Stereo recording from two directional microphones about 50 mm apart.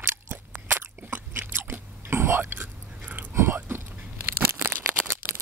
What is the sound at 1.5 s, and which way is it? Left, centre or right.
Biting, right.